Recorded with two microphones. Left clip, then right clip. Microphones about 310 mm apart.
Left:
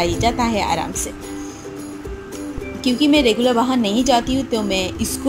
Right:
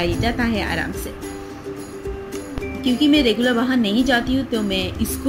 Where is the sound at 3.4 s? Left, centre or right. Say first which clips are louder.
Left 2 dB; left.